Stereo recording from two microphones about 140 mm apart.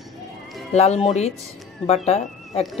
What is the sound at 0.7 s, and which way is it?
Speech, 50° left (ahead or behind).